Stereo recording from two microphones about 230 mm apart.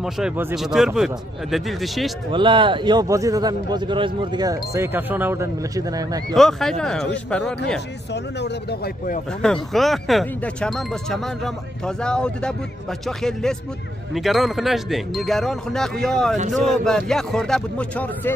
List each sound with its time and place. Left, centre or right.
0.0 s speech: centre
2.3 s a man's voice: right
6.3 s speech: centre
8.1 s speech: left
9.4 s speech: centre